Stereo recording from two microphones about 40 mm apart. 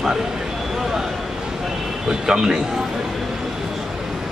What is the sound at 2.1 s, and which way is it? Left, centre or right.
Speech, centre.